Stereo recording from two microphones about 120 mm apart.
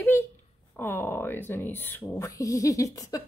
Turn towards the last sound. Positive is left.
turn(degrees=30)  # may be behind; listen again after turning